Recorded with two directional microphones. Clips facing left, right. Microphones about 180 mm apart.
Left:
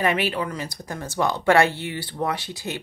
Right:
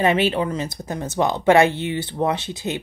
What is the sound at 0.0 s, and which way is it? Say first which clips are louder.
Speech: right 4 dB; 25° right (ahead or behind).